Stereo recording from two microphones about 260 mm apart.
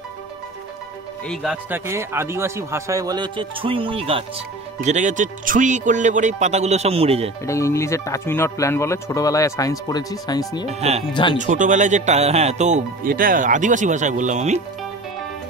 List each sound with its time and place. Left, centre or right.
1.2 s speech: centre; by 7.2 s right
7.4 s speech: centre
10.7 s speech: right